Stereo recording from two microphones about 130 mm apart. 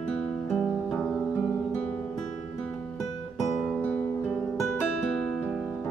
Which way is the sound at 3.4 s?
10° left (ahead or behind).